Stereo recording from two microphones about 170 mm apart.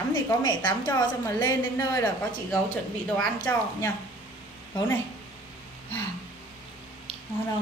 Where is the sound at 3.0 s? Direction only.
5° left (ahead or behind).